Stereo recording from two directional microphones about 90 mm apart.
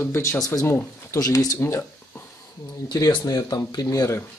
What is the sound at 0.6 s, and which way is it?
Speech, 25° left (ahead or behind).